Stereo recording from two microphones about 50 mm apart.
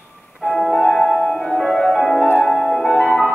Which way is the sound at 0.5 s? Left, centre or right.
Centre.